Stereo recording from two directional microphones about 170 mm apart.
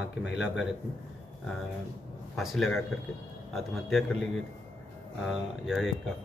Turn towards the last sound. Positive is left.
turn(degrees=-5)  # may be behind; listen again after turning